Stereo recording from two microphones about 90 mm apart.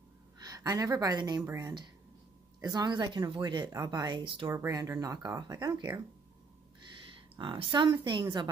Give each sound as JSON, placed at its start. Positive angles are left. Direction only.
{"t": 0.4, "sound": "a woman's voice", "side_deg": -40}
{"t": 4.5, "sound": "speech", "side_deg": -40}
{"t": 7.3, "sound": "a woman's voice", "side_deg": -60}